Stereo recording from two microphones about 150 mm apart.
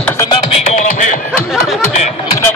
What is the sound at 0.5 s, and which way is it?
Music, 55° left (ahead or behind).